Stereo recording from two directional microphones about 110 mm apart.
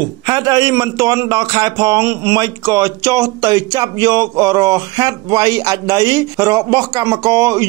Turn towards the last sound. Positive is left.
turn(degrees=-30)  # may be behind; listen again after turning